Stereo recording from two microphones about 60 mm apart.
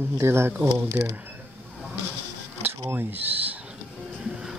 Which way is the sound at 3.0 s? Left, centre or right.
Right.